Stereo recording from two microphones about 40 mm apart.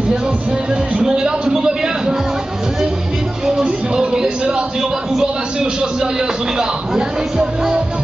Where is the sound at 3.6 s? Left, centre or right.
Right.